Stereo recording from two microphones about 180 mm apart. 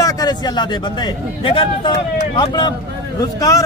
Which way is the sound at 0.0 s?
20° left (ahead or behind).